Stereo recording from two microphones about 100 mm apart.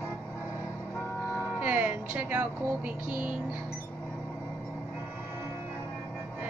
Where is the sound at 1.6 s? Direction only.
15° right (ahead or behind).